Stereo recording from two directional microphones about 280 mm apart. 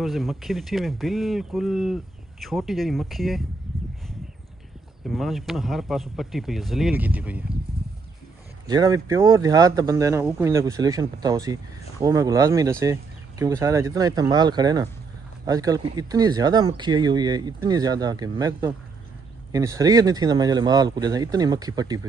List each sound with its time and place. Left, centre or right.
0.0 s speech: centre
5.0 s speech: centre
8.6 s speech: centre